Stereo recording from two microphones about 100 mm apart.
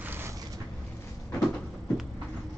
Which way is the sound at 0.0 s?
20° right (ahead or behind).